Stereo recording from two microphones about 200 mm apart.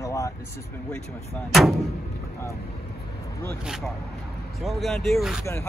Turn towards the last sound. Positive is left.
turn(degrees=0)  # may be behind; listen again after turning